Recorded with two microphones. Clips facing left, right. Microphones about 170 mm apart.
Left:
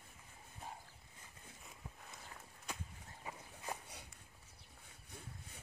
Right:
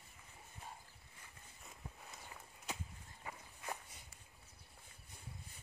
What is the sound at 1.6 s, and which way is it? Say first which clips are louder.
Walk: right 2 dB; centre (ahead or behind).